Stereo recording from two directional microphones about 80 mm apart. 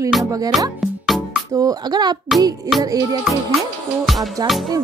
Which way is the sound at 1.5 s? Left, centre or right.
Right.